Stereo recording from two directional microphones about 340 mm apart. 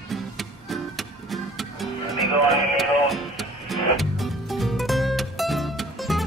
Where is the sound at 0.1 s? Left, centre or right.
Centre.